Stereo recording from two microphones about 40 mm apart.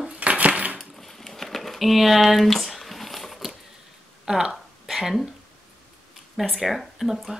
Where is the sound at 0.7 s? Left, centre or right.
Centre.